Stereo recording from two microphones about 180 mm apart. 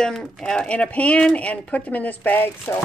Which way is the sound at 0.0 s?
5° left (ahead or behind).